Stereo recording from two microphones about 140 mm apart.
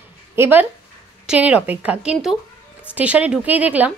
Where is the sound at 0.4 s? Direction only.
15° right (ahead or behind).